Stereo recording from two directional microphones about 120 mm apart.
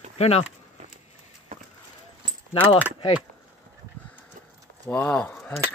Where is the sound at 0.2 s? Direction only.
65° left (ahead or behind).